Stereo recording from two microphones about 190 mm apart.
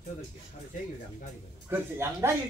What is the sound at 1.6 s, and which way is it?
Speech, 15° right (ahead or behind).